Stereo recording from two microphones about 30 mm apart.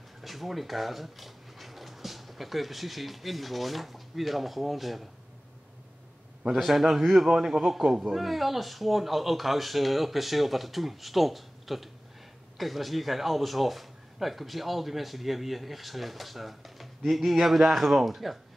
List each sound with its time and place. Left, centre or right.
0.2 s speech: centre
6.6 s a man's voice: centre